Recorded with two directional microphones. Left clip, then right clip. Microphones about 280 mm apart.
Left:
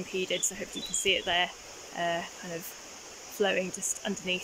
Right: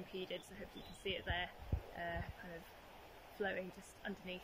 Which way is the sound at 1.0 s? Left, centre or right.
Centre.